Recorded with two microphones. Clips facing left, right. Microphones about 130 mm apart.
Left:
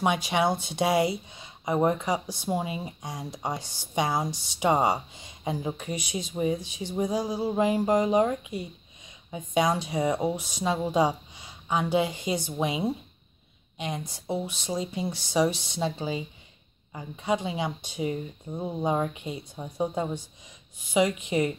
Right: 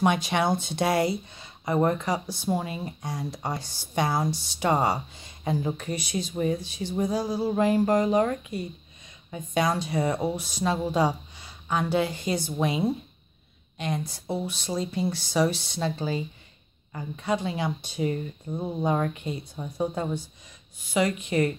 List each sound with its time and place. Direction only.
0.0 s speech: 10° left (ahead or behind)